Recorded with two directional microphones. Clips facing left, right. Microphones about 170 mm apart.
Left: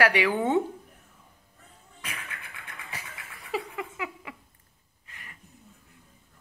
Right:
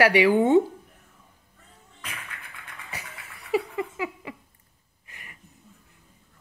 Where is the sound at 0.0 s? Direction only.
10° right (ahead or behind).